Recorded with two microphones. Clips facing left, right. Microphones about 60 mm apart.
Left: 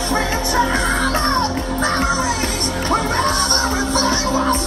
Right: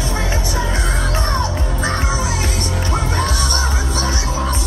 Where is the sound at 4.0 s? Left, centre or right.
Centre.